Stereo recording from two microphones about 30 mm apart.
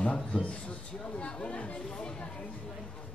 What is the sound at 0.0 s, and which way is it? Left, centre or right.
Speech, left.